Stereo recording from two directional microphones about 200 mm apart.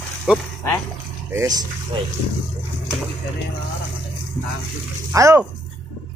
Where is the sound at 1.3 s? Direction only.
15° right (ahead or behind).